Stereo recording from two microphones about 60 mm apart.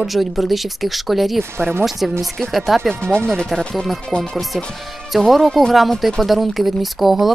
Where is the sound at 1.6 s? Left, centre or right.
Right.